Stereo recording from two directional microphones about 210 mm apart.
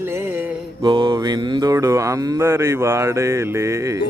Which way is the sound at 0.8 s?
20° right (ahead or behind).